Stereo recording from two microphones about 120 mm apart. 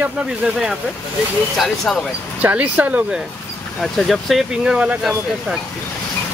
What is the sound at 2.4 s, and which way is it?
Speech, 15° right (ahead or behind).